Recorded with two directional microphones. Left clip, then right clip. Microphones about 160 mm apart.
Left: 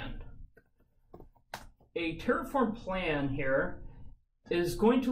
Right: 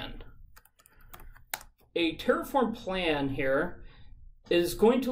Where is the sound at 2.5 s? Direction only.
15° right (ahead or behind).